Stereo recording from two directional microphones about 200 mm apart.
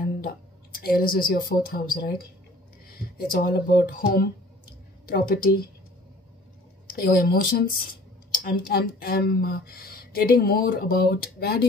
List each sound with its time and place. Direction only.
0.0 s speech: 45° left (ahead or behind)
3.2 s speech: 45° left (ahead or behind)
6.9 s speech: 45° left (ahead or behind)